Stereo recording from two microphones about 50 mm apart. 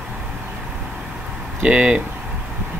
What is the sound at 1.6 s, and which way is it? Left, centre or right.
Speech, right.